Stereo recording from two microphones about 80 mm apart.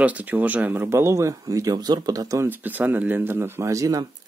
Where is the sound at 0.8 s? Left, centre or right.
Right.